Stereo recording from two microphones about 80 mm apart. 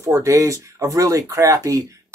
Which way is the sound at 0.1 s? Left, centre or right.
Right.